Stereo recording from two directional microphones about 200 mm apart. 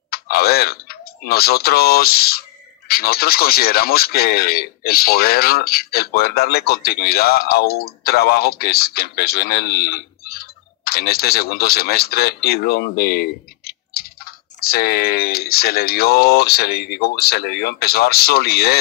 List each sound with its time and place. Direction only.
0.1 s speech: 50° left (ahead or behind)